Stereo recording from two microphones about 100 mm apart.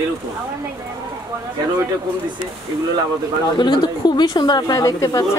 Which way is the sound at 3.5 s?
45° left (ahead or behind).